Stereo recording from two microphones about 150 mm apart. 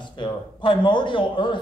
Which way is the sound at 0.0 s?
30° left (ahead or behind).